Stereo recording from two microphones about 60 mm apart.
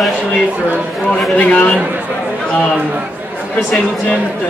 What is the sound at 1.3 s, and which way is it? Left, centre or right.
Speech, left.